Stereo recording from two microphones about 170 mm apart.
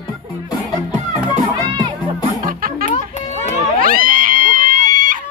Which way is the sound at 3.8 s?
55° right (ahead or behind).